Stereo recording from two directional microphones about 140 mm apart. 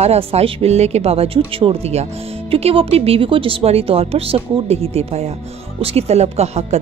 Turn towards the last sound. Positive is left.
turn(degrees=-50)  # may be behind; listen again after turning